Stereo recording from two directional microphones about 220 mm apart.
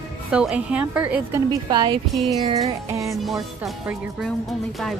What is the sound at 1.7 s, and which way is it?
Speech, 20° right (ahead or behind).